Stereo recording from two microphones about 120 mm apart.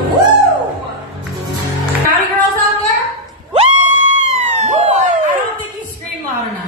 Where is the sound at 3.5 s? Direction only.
70° right (ahead or behind).